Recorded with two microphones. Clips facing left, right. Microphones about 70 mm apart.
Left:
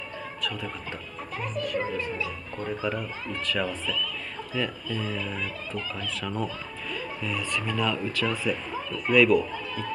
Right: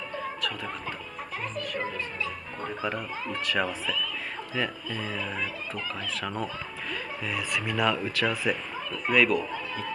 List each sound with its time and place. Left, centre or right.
2.8 s speech: centre
4.6 s speech: centre